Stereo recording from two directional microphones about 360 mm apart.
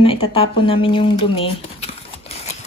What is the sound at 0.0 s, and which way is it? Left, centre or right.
Speech, centre.